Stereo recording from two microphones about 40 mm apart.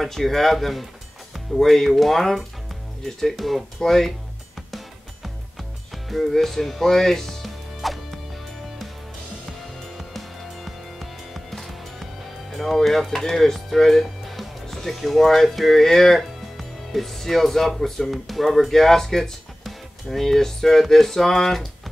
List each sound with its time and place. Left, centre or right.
0.0 s speech: centre
4.6 s music: centre
9.5 s music: centre
15.0 s speech: centre